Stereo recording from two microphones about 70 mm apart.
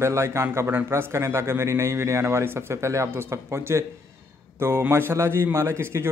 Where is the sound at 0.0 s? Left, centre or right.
Right.